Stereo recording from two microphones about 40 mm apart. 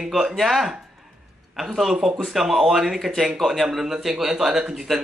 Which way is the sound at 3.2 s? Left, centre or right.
Centre.